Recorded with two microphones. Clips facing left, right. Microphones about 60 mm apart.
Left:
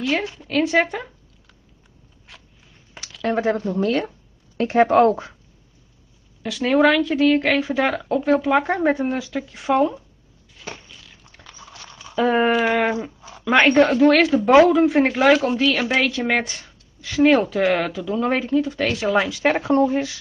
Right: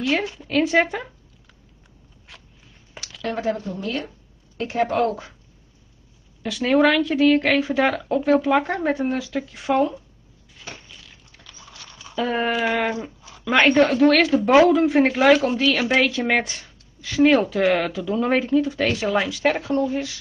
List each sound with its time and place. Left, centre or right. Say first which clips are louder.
0.0 s a woman's voice: even; centre
2.3 s a sound: even; centre
3.4 s speech: left 5 dB; left
6.4 s a woman's voice: left 1 dB; centre
10.9 s dog: even; centre
11.3 s a sound: left 3 dB; left
12.2 s a woman's voice: left 5 dB; centre
19.2 s speech: left 1 dB; centre
19.5 s speech: left 4 dB; left